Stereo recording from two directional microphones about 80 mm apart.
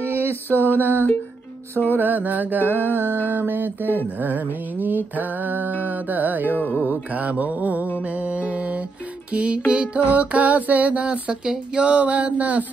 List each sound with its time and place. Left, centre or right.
0.0 s a sound: right
0.7 s mantra: right
2.6 s music: left
3.3 s mantra: right
6.5 s music: left
6.9 s mantra: centre
8.0 s music: centre